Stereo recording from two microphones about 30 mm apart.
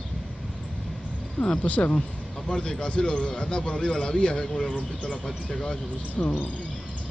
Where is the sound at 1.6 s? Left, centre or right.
Left.